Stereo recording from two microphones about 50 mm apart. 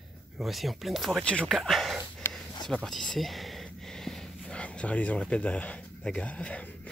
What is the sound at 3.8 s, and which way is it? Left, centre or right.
Snort, centre.